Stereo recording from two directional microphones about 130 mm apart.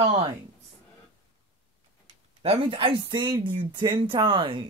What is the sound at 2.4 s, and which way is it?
Speech, 40° right (ahead or behind).